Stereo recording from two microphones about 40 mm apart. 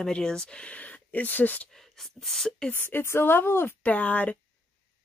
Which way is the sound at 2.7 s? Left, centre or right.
Left.